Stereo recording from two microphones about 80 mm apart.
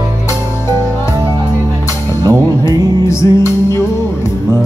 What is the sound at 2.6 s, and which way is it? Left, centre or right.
Music, left.